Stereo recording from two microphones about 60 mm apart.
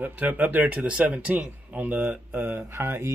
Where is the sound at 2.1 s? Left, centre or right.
Right.